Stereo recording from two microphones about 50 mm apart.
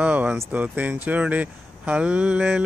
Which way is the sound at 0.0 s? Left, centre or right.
Right.